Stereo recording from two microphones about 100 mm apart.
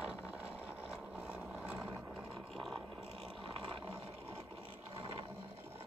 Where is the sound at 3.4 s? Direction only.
60° right (ahead or behind).